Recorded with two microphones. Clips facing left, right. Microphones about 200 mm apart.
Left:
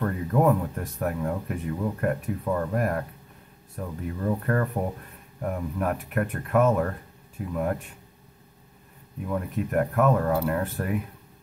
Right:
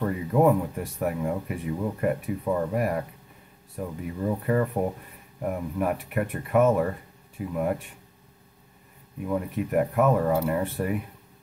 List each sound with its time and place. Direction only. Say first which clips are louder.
0.0 s speech: right 1 dB; 10° right (ahead or behind)
9.3 s speech: right 1 dB; 5° right (ahead or behind)